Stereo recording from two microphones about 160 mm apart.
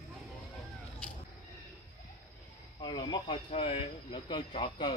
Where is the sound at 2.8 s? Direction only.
30° left (ahead or behind).